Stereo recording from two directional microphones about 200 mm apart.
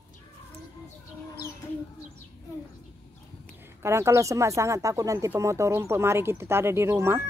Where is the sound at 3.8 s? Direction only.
15° right (ahead or behind).